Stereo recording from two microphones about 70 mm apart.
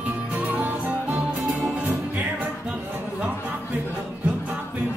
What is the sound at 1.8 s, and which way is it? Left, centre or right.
Music, right.